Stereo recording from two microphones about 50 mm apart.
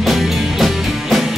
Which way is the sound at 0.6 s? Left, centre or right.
Centre.